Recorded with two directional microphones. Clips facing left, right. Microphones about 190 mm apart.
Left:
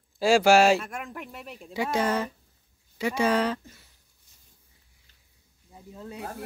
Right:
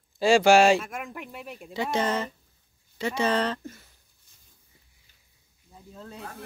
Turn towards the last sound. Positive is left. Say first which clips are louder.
# left 3 dB
turn(degrees=10)  # may be behind; listen again after turning